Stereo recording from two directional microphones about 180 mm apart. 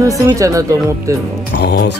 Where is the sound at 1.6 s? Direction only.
70° left (ahead or behind).